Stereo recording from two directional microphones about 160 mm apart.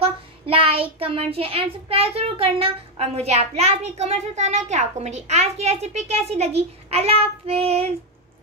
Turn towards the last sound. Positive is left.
turn(degrees=-40)  # may be behind; listen again after turning